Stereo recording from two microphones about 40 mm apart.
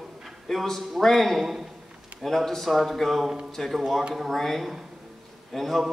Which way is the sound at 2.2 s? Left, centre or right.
Centre.